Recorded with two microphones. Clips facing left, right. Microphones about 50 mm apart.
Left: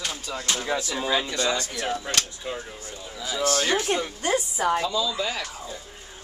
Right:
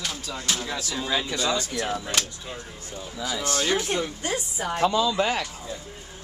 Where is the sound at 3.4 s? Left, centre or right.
Centre.